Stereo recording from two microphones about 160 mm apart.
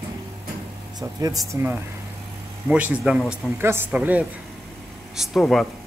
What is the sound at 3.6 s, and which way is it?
Speech, 15° right (ahead or behind).